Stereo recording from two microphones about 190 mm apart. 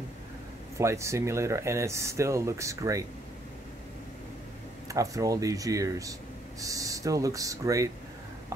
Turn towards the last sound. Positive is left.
turn(degrees=-15)  # may be behind; listen again after turning